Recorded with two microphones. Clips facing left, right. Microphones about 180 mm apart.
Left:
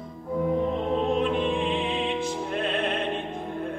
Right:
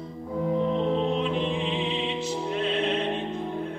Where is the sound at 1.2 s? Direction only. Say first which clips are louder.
Left 2 dB; 50° left (ahead or behind).